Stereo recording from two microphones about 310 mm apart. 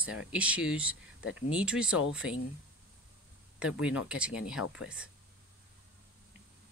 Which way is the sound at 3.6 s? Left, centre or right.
Centre.